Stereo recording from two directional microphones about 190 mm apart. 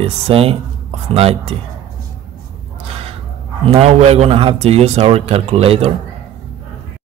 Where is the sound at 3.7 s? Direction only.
30° right (ahead or behind).